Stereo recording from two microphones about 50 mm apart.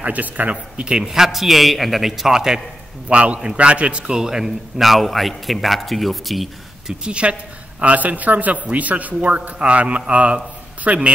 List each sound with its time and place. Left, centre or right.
0.0 s a man's voice: right; by 2.6 s centre
3.1 s a man's voice: right
4.2 s a man's voice: centre
6.9 s a man's voice: right